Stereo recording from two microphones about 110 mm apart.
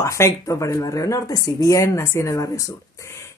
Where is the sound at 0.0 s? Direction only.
25° left (ahead or behind).